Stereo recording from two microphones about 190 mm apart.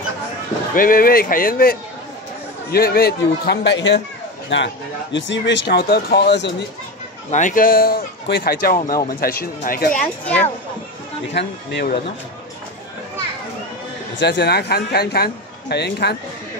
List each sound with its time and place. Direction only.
0.7 s speech: 50° left (ahead or behind); by 4.0 s 65° left (ahead or behind)
5.1 s speech: 70° left (ahead or behind)
7.2 s speech: 40° left (ahead or behind); by 11.9 s 65° left (ahead or behind)
14.1 s speech: 65° left (ahead or behind)